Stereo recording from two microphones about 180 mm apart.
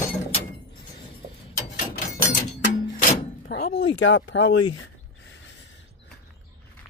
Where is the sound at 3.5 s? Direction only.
80° left.